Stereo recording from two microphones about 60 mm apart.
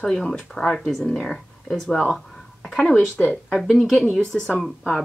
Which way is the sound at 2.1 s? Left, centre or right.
Centre.